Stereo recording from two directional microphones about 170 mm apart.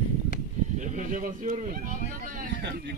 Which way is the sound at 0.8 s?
50° right (ahead or behind).